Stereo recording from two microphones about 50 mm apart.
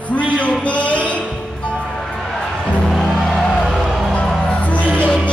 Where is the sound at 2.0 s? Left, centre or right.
Centre.